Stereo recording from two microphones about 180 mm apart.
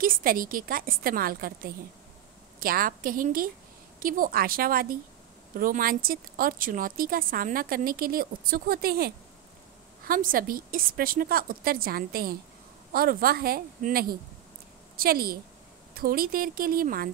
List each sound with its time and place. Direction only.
0.0 s a woman's voice: 50° right (ahead or behind)